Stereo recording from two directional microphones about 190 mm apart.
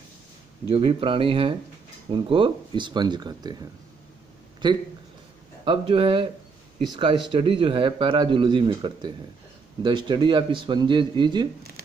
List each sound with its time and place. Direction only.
0.7 s speech: 30° right (ahead or behind)
4.6 s speech: 25° right (ahead or behind)